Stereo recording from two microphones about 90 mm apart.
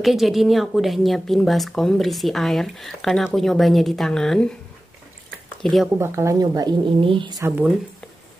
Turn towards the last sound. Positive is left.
turn(degrees=-20)  # may be behind; listen again after turning